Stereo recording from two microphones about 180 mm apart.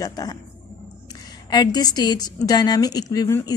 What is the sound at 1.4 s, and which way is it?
A woman's voice, 25° left (ahead or behind).